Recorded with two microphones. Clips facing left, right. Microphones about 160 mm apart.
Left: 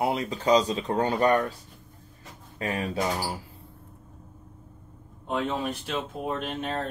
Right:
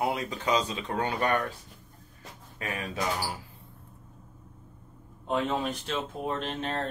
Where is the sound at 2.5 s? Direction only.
35° left (ahead or behind).